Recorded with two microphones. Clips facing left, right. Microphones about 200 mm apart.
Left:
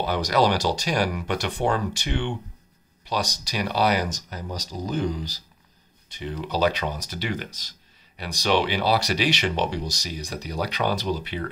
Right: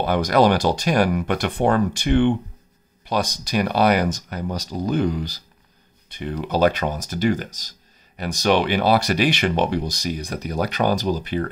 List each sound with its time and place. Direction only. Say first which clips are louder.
0.0 s speech: right 5 dB; 55° right (ahead or behind)